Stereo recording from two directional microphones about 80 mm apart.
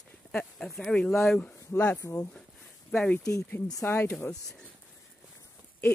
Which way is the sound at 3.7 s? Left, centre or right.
Left.